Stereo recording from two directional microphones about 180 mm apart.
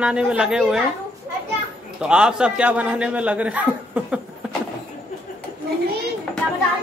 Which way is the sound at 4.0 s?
5° right (ahead or behind).